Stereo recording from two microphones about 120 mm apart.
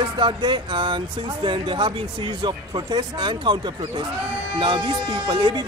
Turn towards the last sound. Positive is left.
turn(degrees=-40)  # may be behind; listen again after turning